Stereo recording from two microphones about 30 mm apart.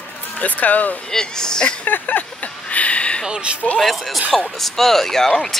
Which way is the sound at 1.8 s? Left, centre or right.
Left.